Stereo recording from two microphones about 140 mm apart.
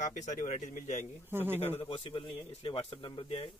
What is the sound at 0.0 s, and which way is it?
Speech, 60° left (ahead or behind).